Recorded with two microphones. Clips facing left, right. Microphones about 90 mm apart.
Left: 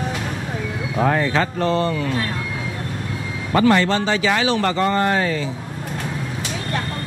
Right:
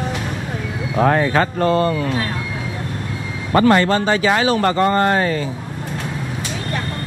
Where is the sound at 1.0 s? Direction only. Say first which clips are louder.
Right 3 dB; 50° right (ahead or behind).